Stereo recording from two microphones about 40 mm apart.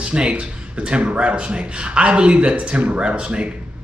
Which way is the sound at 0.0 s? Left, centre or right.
Right.